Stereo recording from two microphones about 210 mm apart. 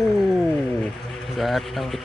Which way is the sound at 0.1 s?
Centre (ahead or behind).